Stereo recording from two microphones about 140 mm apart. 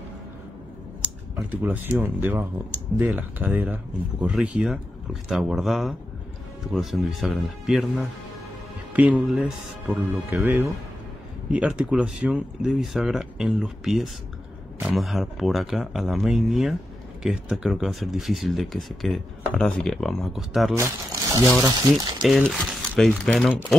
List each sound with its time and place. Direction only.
1.5 s speech: 10° right (ahead or behind)
20.7 s speech: 25° right (ahead or behind)
21.9 s speech: centre (ahead or behind)